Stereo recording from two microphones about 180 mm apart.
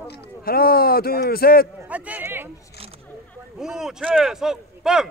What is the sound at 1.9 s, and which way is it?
Speech, 10° right (ahead or behind).